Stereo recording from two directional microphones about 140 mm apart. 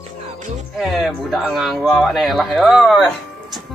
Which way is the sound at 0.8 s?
Centre (ahead or behind).